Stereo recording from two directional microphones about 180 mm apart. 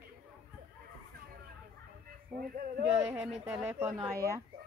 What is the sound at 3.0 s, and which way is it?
A woman's voice, 15° right (ahead or behind).